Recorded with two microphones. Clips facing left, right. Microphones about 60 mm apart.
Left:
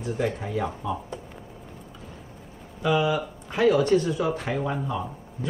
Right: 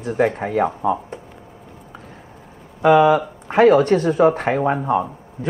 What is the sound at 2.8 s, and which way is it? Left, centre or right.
Speech, right.